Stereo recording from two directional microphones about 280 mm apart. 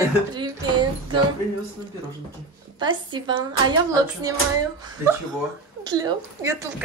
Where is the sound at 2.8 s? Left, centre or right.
Centre.